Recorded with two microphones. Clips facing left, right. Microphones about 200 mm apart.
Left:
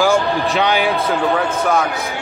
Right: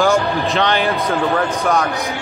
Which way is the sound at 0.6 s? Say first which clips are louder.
Left 1 dB; 10° left (ahead or behind).